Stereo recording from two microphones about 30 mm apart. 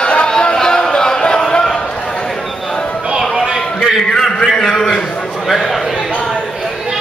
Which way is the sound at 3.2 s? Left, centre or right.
Centre.